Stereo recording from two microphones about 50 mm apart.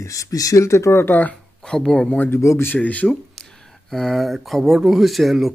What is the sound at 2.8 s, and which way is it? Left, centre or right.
Speech, left.